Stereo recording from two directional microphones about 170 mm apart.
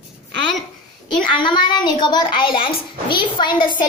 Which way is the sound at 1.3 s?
30° left (ahead or behind).